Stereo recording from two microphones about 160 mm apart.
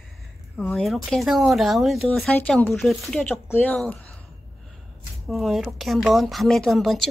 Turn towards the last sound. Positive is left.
turn(degrees=0)  # may be behind; listen again after turning